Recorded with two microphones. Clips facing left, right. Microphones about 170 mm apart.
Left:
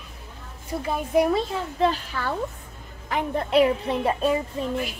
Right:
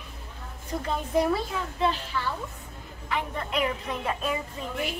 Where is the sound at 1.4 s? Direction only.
30° left (ahead or behind).